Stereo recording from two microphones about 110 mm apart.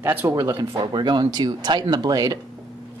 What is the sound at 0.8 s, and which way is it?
Speech, 40° right (ahead or behind).